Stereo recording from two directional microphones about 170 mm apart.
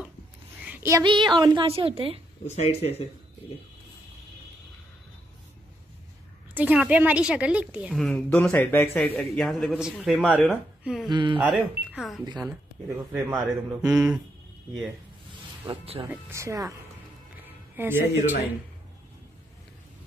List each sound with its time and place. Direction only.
0.7 s a sound: 15° right (ahead or behind)
1.0 s a woman's voice: 30° right (ahead or behind)
2.4 s speech: 40° left (ahead or behind)
6.5 s a woman's voice: 10° right (ahead or behind)
10.3 s speech: 10° left (ahead or behind)
10.8 s speech: centre (ahead or behind)
11.1 s a woman's voice: 25° right (ahead or behind)
11.3 s a man's voice: 5° right (ahead or behind)
13.1 s a woman's voice: 15° right (ahead or behind)
13.8 s a man's voice: 5° right (ahead or behind)
15.6 s speech: 30° right (ahead or behind)
16.0 s a woman's voice: 15° right (ahead or behind)
17.7 s a woman's voice: 10° right (ahead or behind)